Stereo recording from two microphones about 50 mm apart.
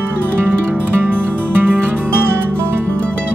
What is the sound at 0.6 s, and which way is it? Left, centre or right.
Music, right.